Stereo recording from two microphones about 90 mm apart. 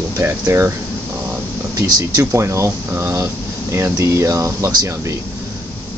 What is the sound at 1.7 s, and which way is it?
Speech, 45° right (ahead or behind).